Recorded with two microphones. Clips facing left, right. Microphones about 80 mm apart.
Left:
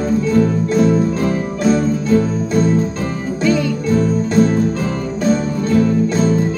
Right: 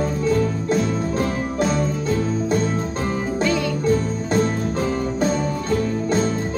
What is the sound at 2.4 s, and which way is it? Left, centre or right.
Music, right.